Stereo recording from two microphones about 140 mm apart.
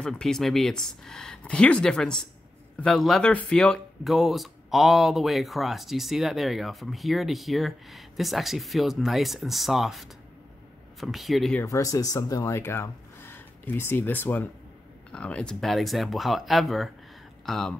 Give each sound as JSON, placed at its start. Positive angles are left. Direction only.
{"t": 0.0, "sound": "speech", "side_deg": 5}
{"t": 11.6, "sound": "speech", "side_deg": 25}